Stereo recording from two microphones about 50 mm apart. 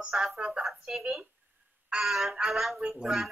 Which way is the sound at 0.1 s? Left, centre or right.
Centre.